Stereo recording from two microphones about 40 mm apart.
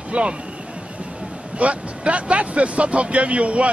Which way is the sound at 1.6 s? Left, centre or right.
Right.